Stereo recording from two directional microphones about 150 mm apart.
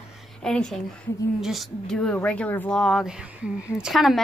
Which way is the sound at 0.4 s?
5° left (ahead or behind).